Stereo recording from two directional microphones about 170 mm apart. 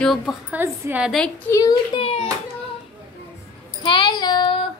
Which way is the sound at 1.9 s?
35° left (ahead or behind).